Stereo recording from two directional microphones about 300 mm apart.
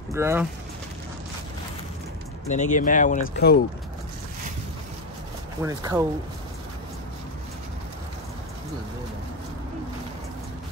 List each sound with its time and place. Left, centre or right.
0.1 s speech: centre
2.4 s speech: left
5.6 s speech: centre